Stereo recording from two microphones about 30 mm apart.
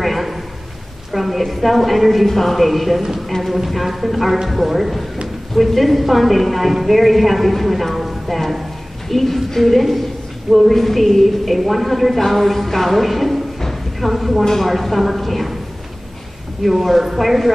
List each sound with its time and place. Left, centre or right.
0.0 s a sound: centre
1.1 s a woman's voice: centre
16.6 s a woman's voice: centre